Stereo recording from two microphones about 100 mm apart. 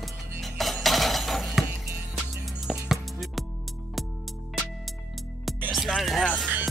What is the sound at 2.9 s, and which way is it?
Music, centre (ahead or behind).